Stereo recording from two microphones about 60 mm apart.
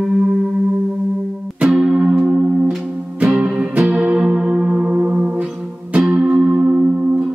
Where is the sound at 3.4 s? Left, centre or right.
Right.